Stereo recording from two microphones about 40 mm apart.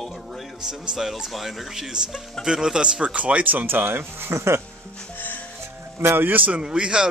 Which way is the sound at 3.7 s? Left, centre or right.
Right.